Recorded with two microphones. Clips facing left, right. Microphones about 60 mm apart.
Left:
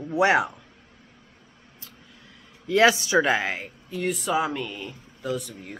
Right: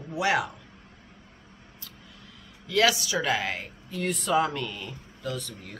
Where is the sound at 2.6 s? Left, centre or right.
Left.